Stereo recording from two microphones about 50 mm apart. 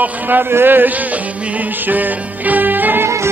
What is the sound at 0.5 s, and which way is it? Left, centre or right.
Speech, right.